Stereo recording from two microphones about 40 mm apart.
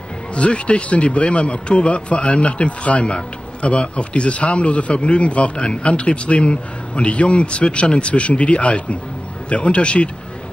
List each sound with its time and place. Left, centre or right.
0.4 s speech: left